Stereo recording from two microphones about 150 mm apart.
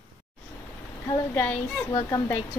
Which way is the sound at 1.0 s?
15° left (ahead or behind).